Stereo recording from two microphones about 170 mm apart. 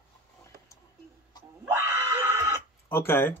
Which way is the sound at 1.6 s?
10° right (ahead or behind).